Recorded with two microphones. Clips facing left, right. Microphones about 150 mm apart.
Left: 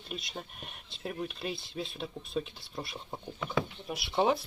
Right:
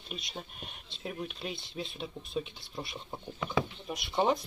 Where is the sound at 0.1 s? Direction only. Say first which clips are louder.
Left 1 dB; centre (ahead or behind).